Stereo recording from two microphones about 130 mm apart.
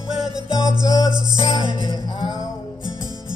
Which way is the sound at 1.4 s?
40° left (ahead or behind).